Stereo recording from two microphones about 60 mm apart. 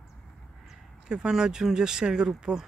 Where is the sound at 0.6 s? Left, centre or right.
Centre.